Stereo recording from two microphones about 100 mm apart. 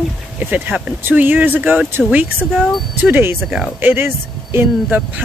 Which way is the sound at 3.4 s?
5° right (ahead or behind).